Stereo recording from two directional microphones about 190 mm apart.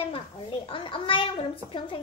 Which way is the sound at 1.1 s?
25° left (ahead or behind).